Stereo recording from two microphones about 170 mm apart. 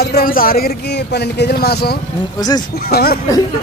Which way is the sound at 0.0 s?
60° left (ahead or behind).